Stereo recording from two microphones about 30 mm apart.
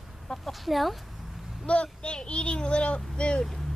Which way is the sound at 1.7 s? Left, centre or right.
Left.